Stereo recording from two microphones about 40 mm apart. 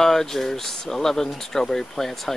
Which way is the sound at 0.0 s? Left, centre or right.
Centre.